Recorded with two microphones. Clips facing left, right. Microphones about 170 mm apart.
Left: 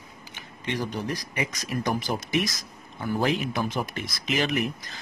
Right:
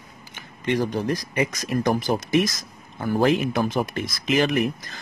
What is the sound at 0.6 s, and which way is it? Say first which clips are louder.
Speech: right 7 dB; 50° right (ahead or behind).